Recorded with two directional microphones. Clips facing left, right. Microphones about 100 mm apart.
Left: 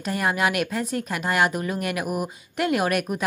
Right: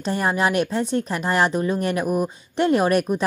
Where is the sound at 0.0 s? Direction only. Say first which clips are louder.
Right 2 dB; 30° right (ahead or behind).